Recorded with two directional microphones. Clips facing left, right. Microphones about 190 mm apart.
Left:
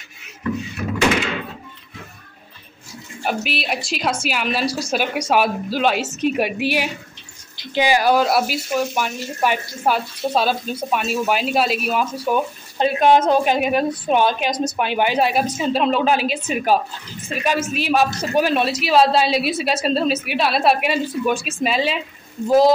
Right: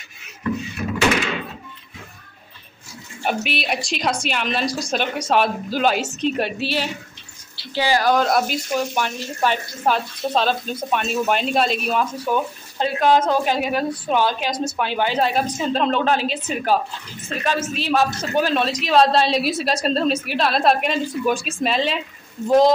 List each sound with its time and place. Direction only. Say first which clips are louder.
3.3 s a woman's voice: even; centre (ahead or behind)
12.7 s a woman's voice: left 2 dB; 20° left (ahead or behind)